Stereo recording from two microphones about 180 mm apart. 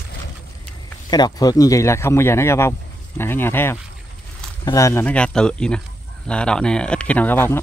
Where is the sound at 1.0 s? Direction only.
25° left (ahead or behind).